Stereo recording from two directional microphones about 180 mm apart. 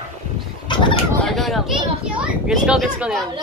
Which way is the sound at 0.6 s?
25° left (ahead or behind).